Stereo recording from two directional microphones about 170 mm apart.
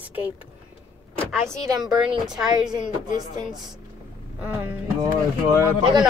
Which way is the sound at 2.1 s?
25° right (ahead or behind).